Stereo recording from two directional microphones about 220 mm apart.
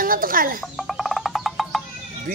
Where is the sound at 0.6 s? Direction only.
Centre (ahead or behind).